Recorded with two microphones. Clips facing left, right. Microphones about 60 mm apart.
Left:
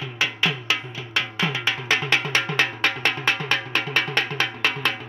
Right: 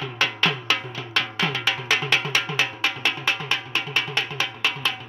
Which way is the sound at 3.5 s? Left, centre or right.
Left.